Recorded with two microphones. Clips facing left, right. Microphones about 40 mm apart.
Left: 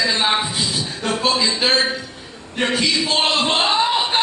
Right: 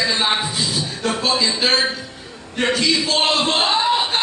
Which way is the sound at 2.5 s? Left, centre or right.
Centre.